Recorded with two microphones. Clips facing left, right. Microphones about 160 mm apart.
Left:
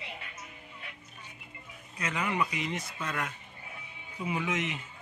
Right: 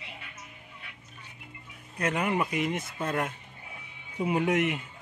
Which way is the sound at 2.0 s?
55° right (ahead or behind).